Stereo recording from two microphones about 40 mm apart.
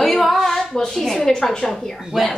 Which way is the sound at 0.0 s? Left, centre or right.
Centre.